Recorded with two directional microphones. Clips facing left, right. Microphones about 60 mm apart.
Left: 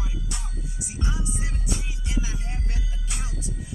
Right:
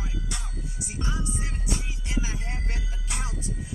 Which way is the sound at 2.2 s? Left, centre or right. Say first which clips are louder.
Right 1 dB; right.